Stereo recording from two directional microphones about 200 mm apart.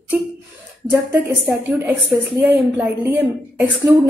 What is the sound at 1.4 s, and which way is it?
A woman's voice, 10° right (ahead or behind).